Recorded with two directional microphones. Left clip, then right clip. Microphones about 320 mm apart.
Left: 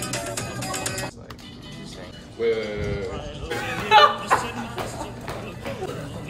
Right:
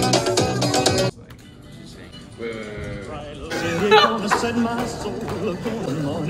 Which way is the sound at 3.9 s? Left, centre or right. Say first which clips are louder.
Left 1 dB; centre.